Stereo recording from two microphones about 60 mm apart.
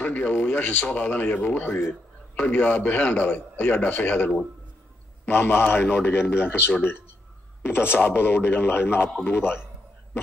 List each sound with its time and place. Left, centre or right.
0.0 s a man's voice: left
8.0 s a man's voice: left